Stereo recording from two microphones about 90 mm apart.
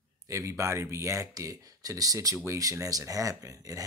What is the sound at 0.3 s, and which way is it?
Speech, 35° right (ahead or behind).